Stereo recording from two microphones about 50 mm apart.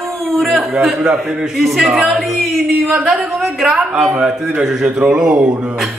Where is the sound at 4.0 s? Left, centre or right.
Centre.